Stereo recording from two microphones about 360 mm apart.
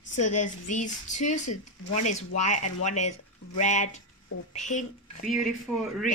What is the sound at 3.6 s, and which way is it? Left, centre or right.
Speech, centre.